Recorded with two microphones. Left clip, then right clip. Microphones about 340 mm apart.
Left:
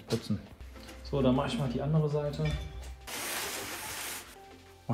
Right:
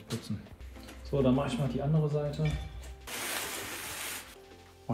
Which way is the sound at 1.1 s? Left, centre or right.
Centre.